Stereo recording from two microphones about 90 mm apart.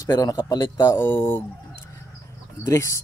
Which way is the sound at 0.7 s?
30° left (ahead or behind).